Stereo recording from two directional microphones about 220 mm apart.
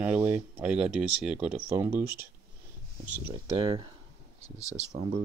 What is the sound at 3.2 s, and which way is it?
Speech, 25° right (ahead or behind).